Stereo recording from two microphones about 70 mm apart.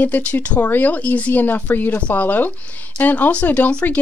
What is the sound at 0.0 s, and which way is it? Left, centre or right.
Speech, left.